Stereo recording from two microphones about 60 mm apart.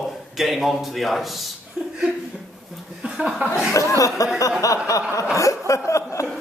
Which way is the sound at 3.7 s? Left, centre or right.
Left.